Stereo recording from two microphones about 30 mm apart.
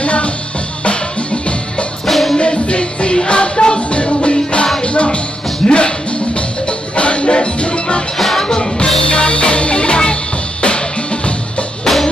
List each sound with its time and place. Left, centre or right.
0.0 s music: left
2.0 s music: centre
2.3 s music: left
7.0 s music: left
8.2 s music: centre
8.5 s music: left